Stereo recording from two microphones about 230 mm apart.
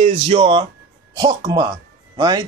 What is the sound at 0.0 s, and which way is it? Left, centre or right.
A man's voice, right.